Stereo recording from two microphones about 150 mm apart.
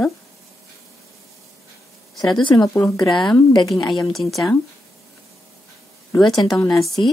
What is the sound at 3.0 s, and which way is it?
Speech, centre (ahead or behind).